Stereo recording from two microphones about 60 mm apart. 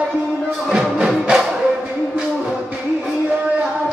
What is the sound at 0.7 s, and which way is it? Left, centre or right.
Music, centre.